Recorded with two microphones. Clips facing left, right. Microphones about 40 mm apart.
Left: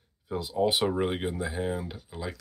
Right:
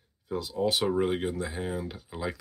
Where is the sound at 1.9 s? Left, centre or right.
Centre.